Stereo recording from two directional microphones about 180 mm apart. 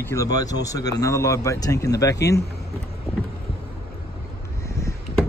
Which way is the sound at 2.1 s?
65° left (ahead or behind).